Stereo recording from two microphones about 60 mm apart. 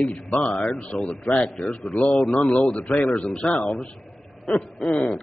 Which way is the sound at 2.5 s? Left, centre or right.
Left.